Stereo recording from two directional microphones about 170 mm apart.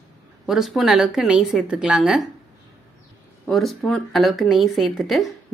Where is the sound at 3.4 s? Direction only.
Centre (ahead or behind).